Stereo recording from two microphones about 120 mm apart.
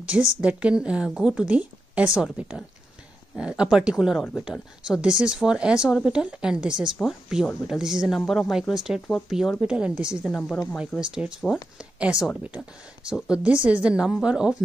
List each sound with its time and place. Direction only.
0.0 s speech: 10° right (ahead or behind)
10.9 s speech: 20° left (ahead or behind)
11.4 s speech: centre (ahead or behind)